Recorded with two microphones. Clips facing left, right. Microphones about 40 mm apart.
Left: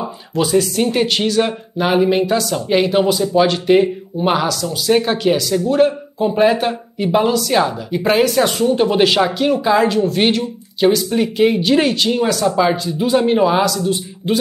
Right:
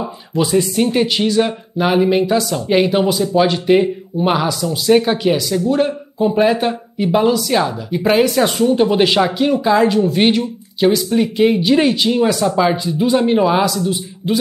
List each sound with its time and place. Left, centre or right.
0.9 s speech: centre
4.5 s speech: centre
4.9 s a man's voice: centre